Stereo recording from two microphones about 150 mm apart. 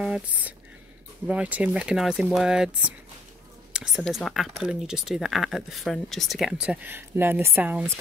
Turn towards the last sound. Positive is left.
turn(degrees=-10)  # may be behind; listen again after turning